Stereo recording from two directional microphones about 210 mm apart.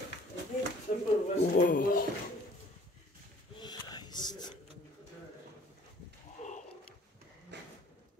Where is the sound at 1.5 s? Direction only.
40° left (ahead or behind).